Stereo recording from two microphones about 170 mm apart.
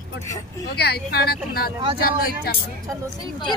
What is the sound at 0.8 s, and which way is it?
Speech, 70° left (ahead or behind).